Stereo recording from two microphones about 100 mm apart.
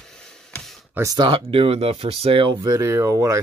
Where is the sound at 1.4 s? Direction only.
75° right (ahead or behind).